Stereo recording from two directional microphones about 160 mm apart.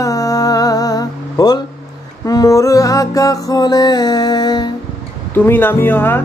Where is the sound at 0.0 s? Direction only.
20° left (ahead or behind).